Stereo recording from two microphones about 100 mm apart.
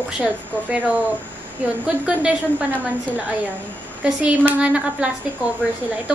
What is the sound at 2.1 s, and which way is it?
Speech, 15° right (ahead or behind).